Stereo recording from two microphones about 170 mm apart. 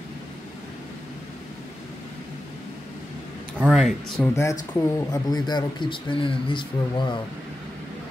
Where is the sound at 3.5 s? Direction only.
5° right (ahead or behind).